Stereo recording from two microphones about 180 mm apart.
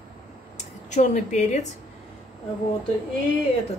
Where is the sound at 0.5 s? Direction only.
40° left (ahead or behind).